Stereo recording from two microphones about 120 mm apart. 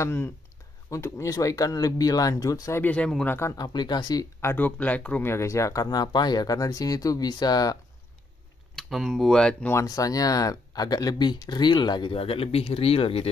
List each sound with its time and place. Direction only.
0.0 s speech: 20° left (ahead or behind)
2.8 s speech: 10° left (ahead or behind)
3.3 s speech: 20° left (ahead or behind)
3.5 s speech: 35° left (ahead or behind)
4.4 s speech: 20° left (ahead or behind)
8.7 s speech: 5° left (ahead or behind)
9.7 s speech: 25° left (ahead or behind); by 13.3 s 55° left (ahead or behind)